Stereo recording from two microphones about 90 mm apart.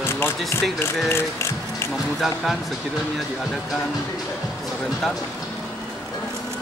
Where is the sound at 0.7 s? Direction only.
25° left (ahead or behind).